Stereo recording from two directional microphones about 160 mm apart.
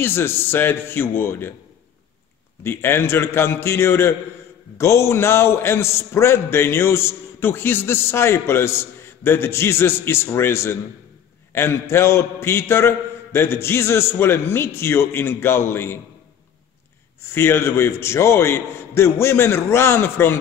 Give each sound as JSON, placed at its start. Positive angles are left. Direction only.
{"t": 0.0, "sound": "a man's voice", "side_deg": 15}
{"t": 2.6, "sound": "a man's voice", "side_deg": 15}
{"t": 17.3, "sound": "a man's voice", "side_deg": 15}